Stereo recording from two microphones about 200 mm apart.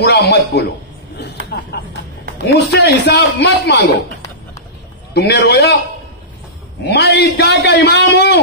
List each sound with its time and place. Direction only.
0.0 s a man's voice: 55° left (ahead or behind)
1.2 s a sound: 55° left (ahead or behind)
2.4 s a man's voice: 60° left (ahead or behind)
5.1 s a man's voice: 55° left (ahead or behind)
6.8 s a man's voice: 55° left (ahead or behind)